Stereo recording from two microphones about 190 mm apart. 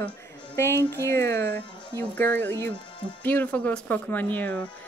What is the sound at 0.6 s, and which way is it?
A woman's voice, 15° left (ahead or behind).